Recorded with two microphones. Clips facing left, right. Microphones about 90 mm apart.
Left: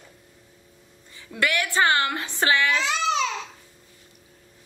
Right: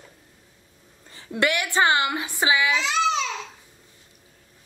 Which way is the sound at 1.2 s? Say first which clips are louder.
Right 1 dB; 25° right (ahead or behind).